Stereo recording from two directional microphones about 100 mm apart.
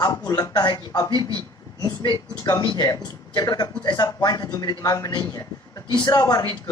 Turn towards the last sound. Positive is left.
turn(degrees=35)  # may be behind; listen again after turning